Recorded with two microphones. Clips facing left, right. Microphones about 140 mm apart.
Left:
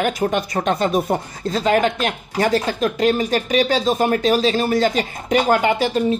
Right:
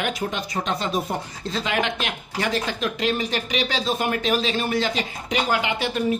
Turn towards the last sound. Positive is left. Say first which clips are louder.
# left 7 dB
turn(degrees=40)  # may be behind; listen again after turning